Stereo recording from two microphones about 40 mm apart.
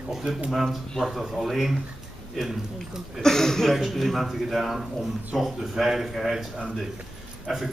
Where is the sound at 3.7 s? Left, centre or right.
Centre.